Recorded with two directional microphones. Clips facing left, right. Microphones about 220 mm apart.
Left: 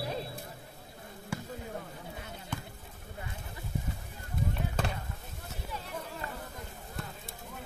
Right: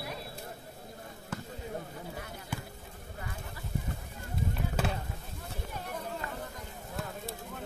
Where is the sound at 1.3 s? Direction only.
10° left (ahead or behind).